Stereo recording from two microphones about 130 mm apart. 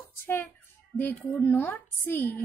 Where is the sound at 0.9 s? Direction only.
15° left (ahead or behind).